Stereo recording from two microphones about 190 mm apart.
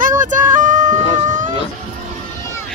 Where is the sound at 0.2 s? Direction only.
45° right (ahead or behind).